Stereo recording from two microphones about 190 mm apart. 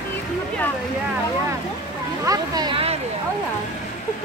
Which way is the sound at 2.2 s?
20° right (ahead or behind).